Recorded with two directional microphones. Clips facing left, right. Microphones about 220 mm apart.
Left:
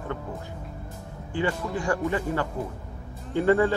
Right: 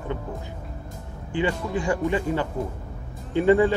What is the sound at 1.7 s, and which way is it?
Speech, 20° right (ahead or behind).